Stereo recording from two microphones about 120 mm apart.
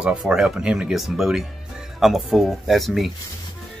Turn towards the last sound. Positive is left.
turn(degrees=0)  # may be behind; listen again after turning